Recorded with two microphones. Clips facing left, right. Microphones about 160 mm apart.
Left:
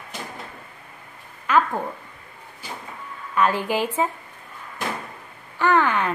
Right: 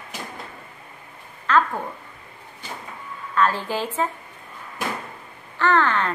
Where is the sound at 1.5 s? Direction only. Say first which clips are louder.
Even; 10° left (ahead or behind).